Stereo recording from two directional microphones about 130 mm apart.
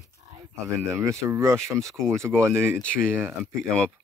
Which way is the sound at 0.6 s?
25° right (ahead or behind).